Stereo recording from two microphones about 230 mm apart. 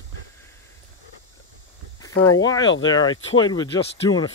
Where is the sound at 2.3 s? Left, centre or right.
Centre.